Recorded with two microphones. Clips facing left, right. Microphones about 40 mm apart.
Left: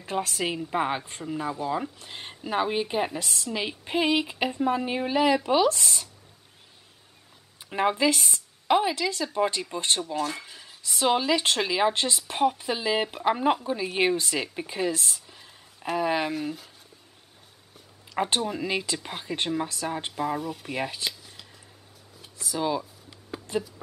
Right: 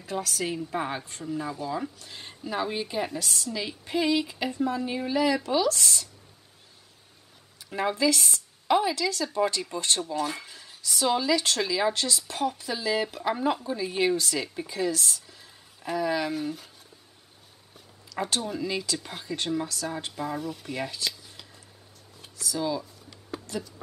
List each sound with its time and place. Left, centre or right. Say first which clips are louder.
0.0 s a woman's voice: left 2 dB; left
7.7 s a woman's voice: left 2 dB; left
10.2 s speech: even; centre
10.8 s a woman's voice: left 2 dB; left
16.3 s speech: even; centre
18.1 s speech: left 3 dB; left
18.4 s a woman's voice: left 2 dB; centre
18.7 s a woman's voice: left 2 dB; left
20.1 s speech: left 3 dB; centre
22.4 s a woman's voice: left 2 dB; left
22.8 s a sound: left 3 dB; centre